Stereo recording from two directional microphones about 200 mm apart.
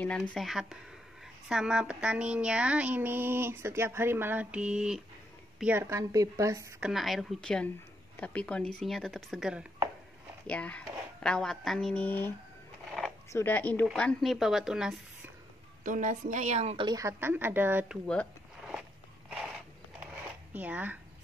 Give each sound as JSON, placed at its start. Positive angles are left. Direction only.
{"t": 0.0, "sound": "a woman's voice", "side_deg": 5}
{"t": 6.8, "sound": "a woman's voice", "side_deg": 0}
{"t": 10.4, "sound": "speech", "side_deg": 5}
{"t": 13.3, "sound": "a woman's voice", "side_deg": 10}
{"t": 15.8, "sound": "a woman's voice", "side_deg": -40}
{"t": 18.0, "sound": "a sound", "side_deg": 5}
{"t": 20.5, "sound": "a woman's voice", "side_deg": -5}